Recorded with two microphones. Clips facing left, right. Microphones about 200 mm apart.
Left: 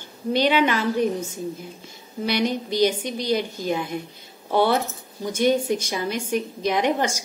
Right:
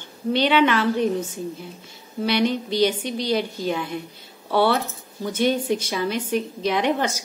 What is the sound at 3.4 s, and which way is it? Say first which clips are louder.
Speech: right 1 dB; 45° left (ahead or behind).